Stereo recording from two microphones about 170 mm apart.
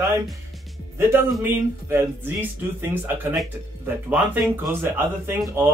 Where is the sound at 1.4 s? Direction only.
10° right (ahead or behind).